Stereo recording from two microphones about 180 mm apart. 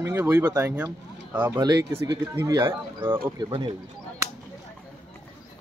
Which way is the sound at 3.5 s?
30° right (ahead or behind).